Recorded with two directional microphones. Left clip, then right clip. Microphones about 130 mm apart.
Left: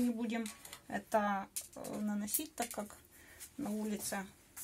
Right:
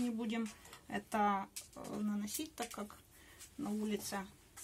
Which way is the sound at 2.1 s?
90° left.